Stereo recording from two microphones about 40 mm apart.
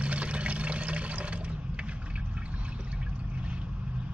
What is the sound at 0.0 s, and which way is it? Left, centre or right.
Toilet flush, right.